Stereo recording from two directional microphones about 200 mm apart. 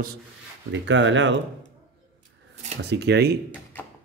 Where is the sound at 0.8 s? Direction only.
65° right (ahead or behind).